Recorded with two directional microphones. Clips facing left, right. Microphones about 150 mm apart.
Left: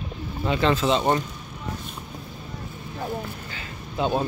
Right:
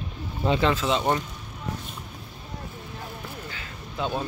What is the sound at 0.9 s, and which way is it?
Speech, 5° left (ahead or behind).